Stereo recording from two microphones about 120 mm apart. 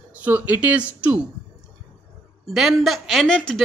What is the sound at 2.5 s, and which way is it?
A woman's voice, 5° right (ahead or behind).